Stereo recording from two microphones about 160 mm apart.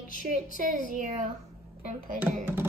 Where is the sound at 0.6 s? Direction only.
55° right (ahead or behind).